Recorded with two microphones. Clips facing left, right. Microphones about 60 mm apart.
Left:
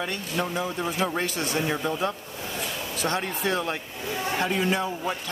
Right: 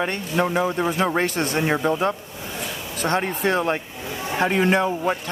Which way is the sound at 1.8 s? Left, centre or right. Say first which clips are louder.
Right 6 dB; right.